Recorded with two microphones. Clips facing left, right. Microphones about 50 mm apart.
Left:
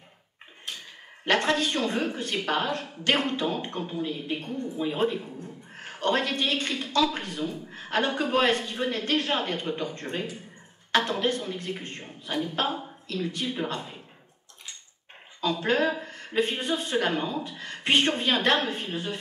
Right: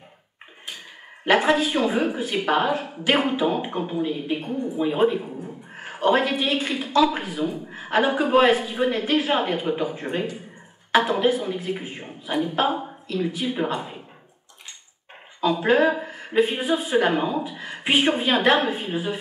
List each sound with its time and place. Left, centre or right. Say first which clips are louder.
1.2 s speech: right 5 dB; centre
15.4 s speech: right 6 dB; centre